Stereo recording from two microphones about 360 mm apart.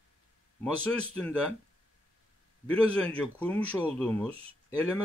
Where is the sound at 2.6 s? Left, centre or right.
Centre.